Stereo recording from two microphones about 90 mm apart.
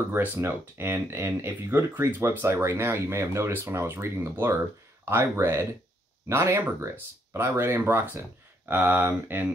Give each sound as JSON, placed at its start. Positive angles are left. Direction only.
{"t": 0.1, "sound": "speech", "side_deg": -25}